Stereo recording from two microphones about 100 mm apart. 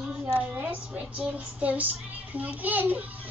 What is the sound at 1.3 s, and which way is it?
Child singing, 15° right (ahead or behind).